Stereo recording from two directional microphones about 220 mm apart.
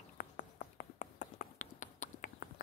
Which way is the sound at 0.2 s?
35° left (ahead or behind).